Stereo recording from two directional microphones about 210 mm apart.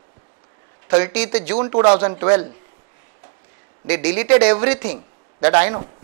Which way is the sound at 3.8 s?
10° right (ahead or behind).